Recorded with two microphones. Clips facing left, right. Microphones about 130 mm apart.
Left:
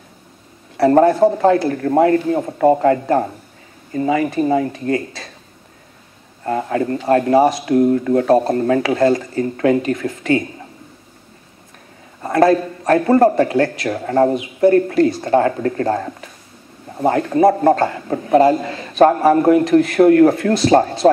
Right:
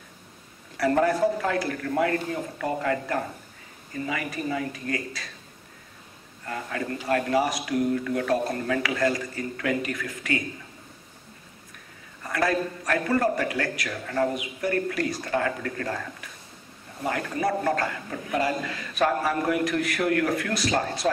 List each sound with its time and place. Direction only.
0.7 s a man's voice: 30° left (ahead or behind)
6.4 s a man's voice: 35° left (ahead or behind)
7.7 s a man's voice: 40° left (ahead or behind)
12.4 s a man's voice: 30° left (ahead or behind)